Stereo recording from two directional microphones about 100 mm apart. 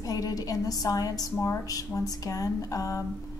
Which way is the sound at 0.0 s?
35° left (ahead or behind).